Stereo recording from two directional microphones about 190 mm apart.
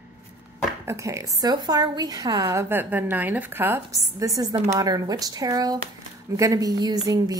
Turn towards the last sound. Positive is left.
turn(degrees=-20)  # may be behind; listen again after turning